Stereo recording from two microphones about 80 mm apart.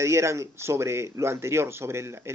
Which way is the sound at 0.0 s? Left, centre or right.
Right.